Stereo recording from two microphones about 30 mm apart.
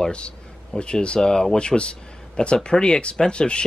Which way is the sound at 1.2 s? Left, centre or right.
Left.